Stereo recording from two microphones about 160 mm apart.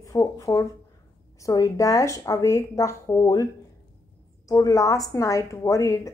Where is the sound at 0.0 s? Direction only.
20° left (ahead or behind).